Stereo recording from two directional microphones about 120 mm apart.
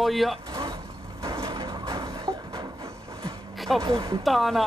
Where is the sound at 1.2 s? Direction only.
30° right (ahead or behind).